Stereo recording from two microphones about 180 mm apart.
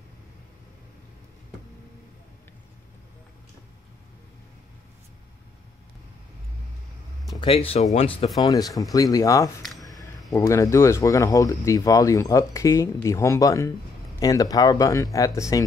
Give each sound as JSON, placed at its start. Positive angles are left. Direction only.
{"t": 7.3, "sound": "speech", "side_deg": 30}
{"t": 8.4, "sound": "speech", "side_deg": 20}
{"t": 9.6, "sound": "a sound", "side_deg": 0}
{"t": 10.3, "sound": "speech", "side_deg": 20}